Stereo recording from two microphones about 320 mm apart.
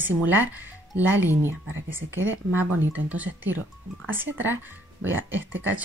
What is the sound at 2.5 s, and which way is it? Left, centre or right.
Speech, centre.